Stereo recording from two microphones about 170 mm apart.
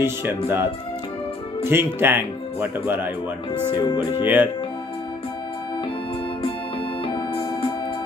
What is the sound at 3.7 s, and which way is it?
Music, 30° left (ahead or behind).